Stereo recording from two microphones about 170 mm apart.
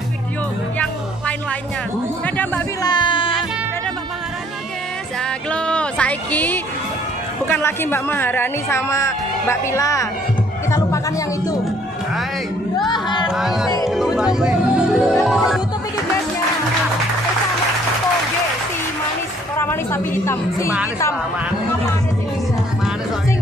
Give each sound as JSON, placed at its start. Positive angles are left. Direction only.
{"t": 2.2, "sound": "a man's voice", "side_deg": 10}
{"t": 2.8, "sound": "music", "side_deg": 25}
{"t": 5.5, "sound": "a sound", "side_deg": 5}
{"t": 7.4, "sound": "a woman's voice", "side_deg": 10}
{"t": 12.7, "sound": "music", "side_deg": 25}
{"t": 13.3, "sound": "speech", "side_deg": 0}
{"t": 13.8, "sound": "music", "side_deg": 0}
{"t": 19.5, "sound": "a woman's voice", "side_deg": 15}